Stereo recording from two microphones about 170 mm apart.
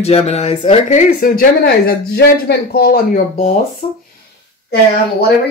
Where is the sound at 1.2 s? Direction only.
60° left (ahead or behind).